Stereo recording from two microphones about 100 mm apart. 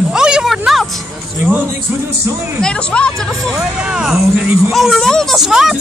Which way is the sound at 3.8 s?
5° right (ahead or behind).